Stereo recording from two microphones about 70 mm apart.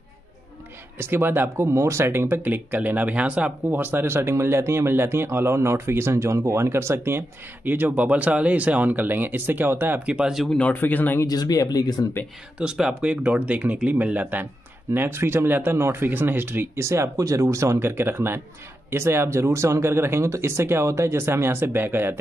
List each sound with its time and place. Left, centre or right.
0.9 s speech: right
1.7 s speech: right
2.0 s speech: right
10.0 s speech: centre
10.3 s speech: centre
10.6 s a man's voice: left
11.2 s speech: left
12.5 s speech: centre
15.0 s speech: right